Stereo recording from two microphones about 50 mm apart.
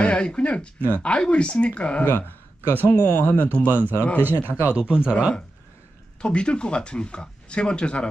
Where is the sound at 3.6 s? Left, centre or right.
Right.